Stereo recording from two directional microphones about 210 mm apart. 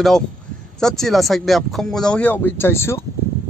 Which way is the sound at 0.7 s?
Centre (ahead or behind).